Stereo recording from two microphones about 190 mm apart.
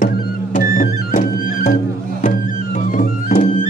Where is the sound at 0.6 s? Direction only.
45° left (ahead or behind).